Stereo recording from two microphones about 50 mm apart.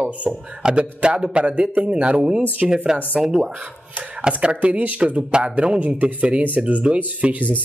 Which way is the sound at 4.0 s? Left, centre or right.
Right.